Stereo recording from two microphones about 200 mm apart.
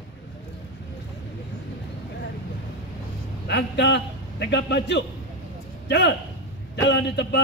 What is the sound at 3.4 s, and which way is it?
A man's voice, 60° left (ahead or behind).